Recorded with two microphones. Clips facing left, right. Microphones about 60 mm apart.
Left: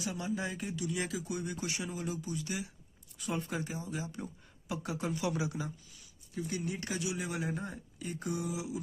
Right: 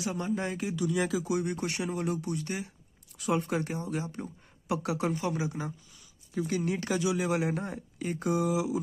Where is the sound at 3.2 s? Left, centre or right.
Right.